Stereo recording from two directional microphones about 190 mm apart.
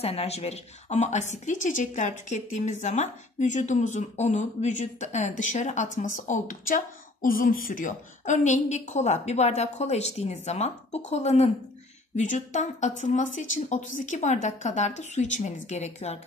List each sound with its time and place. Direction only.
0.0 s a woman's voice: 30° left (ahead or behind)